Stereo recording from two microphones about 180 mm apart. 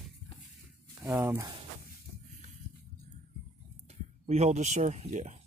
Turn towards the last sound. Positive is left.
turn(degrees=-40)  # may be behind; listen again after turning